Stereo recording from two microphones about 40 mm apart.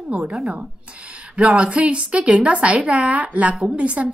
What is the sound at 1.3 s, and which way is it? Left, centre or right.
A woman's voice, right.